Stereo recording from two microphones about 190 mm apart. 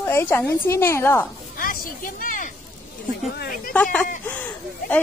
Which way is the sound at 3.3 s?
55° left (ahead or behind).